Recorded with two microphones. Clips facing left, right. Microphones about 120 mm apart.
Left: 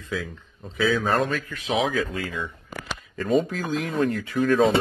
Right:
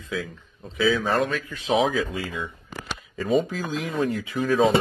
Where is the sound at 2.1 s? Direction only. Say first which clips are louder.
Even; 15° right (ahead or behind).